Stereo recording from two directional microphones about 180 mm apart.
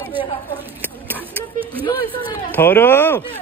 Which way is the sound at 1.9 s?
25° left (ahead or behind).